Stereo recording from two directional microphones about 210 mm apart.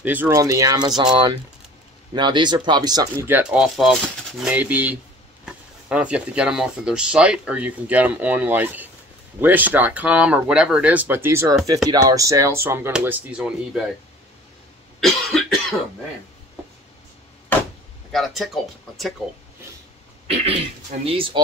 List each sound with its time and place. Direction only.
0.0 s speech: 10° right (ahead or behind)
15.0 s cough: centre (ahead or behind)
18.1 s speech: centre (ahead or behind)
21.0 s speech: 25° right (ahead or behind)